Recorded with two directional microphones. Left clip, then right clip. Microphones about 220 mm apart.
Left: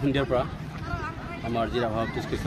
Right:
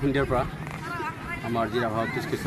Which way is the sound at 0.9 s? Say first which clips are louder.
Right 2 dB; 50° right (ahead or behind).